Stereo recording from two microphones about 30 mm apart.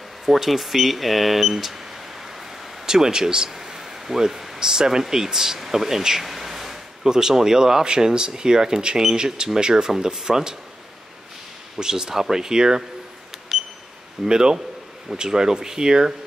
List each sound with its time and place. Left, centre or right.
0.2 s speech: centre
2.9 s speech: right
3.4 s a sound: centre
4.6 s speech: right
6.2 s a sound: centre
7.1 s speech: centre
9.1 s speech: right
11.8 s speech: right
14.2 s speech: right